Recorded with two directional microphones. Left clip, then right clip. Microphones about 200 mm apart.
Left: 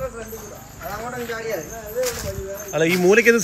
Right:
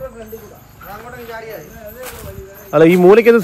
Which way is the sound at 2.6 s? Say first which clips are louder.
Right 9 dB; 30° right (ahead or behind).